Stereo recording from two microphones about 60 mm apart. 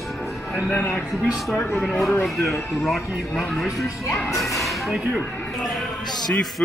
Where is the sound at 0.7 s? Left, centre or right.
Left.